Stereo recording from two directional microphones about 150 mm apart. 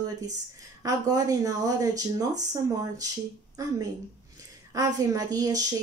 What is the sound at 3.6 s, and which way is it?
Speech, 20° right (ahead or behind).